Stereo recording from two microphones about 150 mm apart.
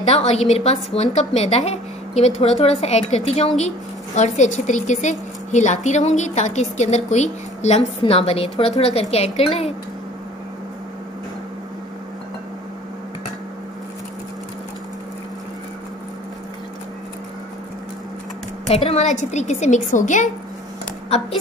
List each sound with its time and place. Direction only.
0.1 s a woman's voice: 45° left (ahead or behind)
18.7 s speech: 40° left (ahead or behind); by 20.2 s 55° left (ahead or behind)